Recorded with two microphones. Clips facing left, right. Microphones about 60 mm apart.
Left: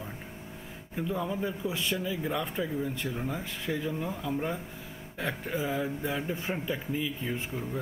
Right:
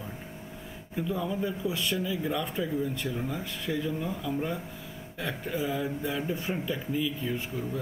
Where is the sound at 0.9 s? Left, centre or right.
Centre.